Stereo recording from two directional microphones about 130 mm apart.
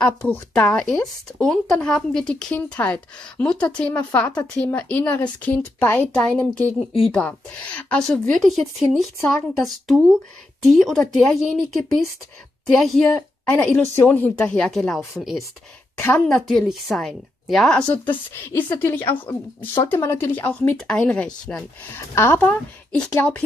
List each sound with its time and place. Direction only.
0.0 s a woman's voice: 10° left (ahead or behind)
17.9 s speech: 15° left (ahead or behind)